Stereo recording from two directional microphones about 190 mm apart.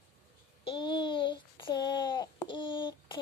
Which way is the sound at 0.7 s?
25° left (ahead or behind).